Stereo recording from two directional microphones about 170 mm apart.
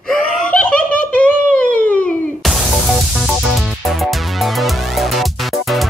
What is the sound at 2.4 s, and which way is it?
Music, centre (ahead or behind).